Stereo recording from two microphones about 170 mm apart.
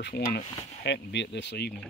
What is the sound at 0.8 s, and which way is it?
Speech, 90° left.